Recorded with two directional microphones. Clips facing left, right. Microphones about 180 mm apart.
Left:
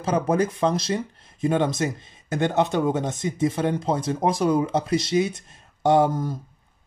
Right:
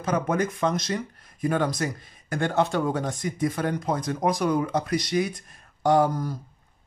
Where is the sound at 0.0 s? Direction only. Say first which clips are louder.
Left 3 dB; 30° left (ahead or behind).